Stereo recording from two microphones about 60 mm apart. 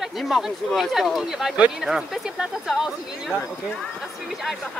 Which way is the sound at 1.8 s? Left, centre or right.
Centre.